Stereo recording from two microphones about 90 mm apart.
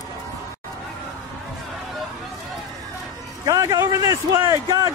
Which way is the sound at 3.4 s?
40° right (ahead or behind).